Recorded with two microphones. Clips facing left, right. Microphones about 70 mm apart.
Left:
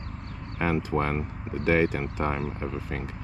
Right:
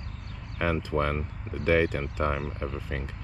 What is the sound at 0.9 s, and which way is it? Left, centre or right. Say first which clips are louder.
Speech: left 1 dB; left.